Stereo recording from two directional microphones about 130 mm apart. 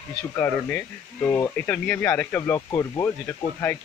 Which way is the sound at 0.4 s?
15° left (ahead or behind).